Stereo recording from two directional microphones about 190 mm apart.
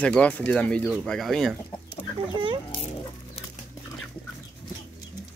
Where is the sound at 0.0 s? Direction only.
5° left (ahead or behind).